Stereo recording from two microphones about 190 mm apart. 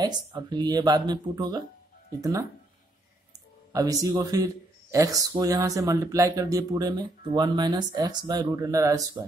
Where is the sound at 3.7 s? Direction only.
20° right (ahead or behind).